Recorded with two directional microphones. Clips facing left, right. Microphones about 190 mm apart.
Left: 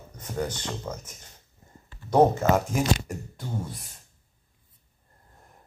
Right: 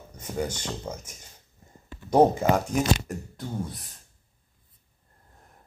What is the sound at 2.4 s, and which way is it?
Speech, 15° right (ahead or behind).